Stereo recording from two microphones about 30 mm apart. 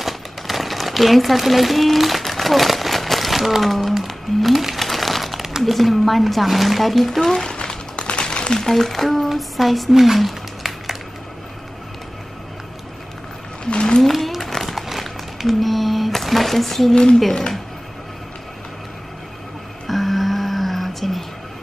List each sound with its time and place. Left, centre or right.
0.0 s crumpling: centre
3.6 s speech: centre
4.7 s a sound: centre
5.6 s speech: centre
7.2 s speech: centre
7.4 s a sound: left
8.5 s speech: centre
13.7 s wild animals: left
14.0 s a sound: centre
15.4 s speech: centre
16.9 s speech: left
19.9 s music: centre